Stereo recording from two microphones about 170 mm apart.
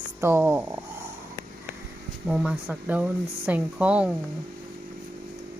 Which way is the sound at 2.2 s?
5° right (ahead or behind).